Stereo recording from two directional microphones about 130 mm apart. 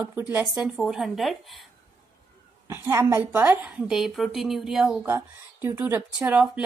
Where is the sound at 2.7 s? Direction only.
20° right (ahead or behind); by 4.9 s 5° right (ahead or behind).